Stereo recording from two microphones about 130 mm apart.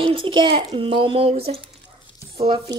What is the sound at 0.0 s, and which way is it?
A child's voice, 40° right (ahead or behind).